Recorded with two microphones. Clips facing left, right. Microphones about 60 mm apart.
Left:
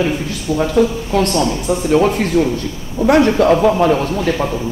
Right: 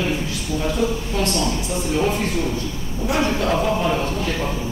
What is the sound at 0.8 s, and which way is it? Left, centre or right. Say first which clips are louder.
A man's voice: left 10 dB; left.